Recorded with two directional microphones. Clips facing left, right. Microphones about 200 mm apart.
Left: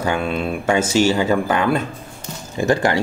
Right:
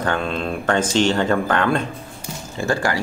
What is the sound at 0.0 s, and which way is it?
Speech, 10° left (ahead or behind).